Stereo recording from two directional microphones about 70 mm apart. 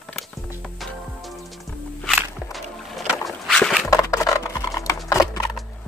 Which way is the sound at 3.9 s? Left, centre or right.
Left.